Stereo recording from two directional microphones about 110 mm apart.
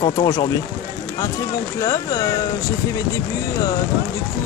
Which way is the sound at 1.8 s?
30° left (ahead or behind).